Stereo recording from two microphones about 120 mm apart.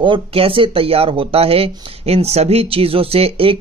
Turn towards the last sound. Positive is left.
turn(degrees=-50)  # may be behind; listen again after turning